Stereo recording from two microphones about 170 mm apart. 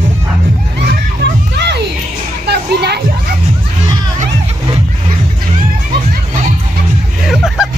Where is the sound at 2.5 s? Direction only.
75° right (ahead or behind).